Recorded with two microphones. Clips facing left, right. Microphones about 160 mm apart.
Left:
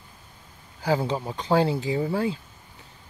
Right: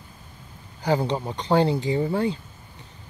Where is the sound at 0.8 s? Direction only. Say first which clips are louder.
Right 1 dB; 5° left (ahead or behind).